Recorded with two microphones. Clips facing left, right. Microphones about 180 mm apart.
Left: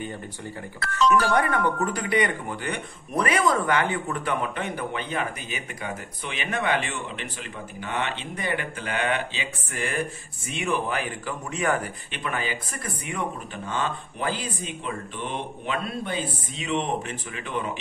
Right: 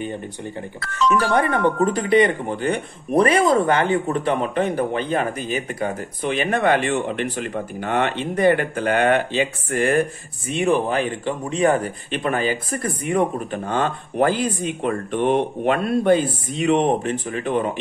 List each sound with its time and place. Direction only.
1.3 s speech: 30° right (ahead or behind); by 10.0 s 50° right (ahead or behind)
10.6 s speech: 35° right (ahead or behind); by 16.9 s 55° right (ahead or behind)
17.0 s speech: 40° right (ahead or behind)